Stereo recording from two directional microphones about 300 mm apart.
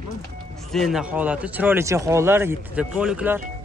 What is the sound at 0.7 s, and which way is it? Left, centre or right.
Speech, centre.